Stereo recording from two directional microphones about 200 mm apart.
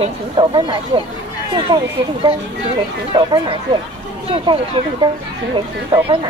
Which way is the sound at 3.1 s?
25° right (ahead or behind).